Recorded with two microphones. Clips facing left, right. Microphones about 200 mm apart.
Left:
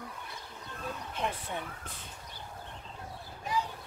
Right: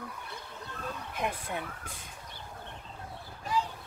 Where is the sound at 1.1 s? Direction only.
10° right (ahead or behind).